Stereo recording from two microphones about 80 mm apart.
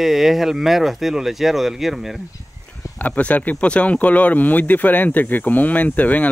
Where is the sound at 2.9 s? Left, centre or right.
Left.